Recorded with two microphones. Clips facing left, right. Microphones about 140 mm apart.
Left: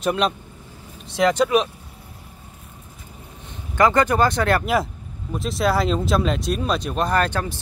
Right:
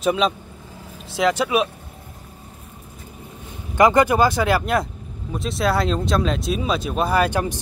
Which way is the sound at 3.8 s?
15° right (ahead or behind).